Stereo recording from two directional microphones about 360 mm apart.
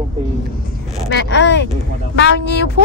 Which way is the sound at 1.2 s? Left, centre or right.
Left.